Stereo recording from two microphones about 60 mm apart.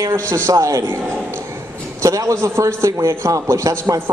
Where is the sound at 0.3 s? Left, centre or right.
Right.